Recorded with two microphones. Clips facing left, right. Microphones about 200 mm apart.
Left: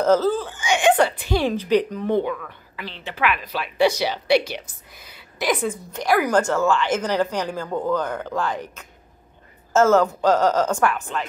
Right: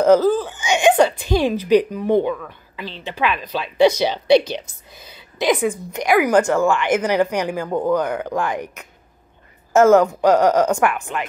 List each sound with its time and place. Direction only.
0.0 s a woman's voice: 15° right (ahead or behind)